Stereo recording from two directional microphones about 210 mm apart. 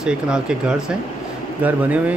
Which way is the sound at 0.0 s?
5° right (ahead or behind).